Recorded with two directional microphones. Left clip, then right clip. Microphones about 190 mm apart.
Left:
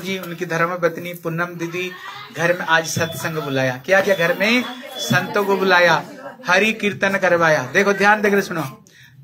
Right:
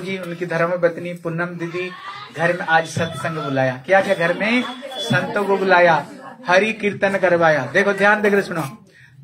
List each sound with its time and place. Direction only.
0.1 s a man's voice: 55° left (ahead or behind)